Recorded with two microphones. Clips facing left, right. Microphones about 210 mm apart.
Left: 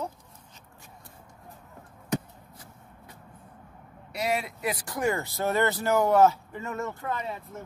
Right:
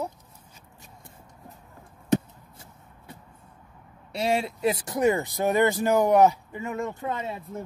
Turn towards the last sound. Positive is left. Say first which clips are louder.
# right 2 dB
turn(degrees=-25)  # may be behind; listen again after turning